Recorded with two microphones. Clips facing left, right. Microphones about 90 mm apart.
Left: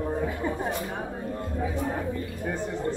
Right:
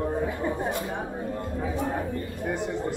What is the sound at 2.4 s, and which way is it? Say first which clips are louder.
Speech: right 1 dB; 10° right (ahead or behind).